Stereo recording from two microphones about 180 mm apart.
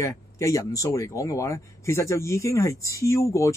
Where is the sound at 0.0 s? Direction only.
15° left (ahead or behind).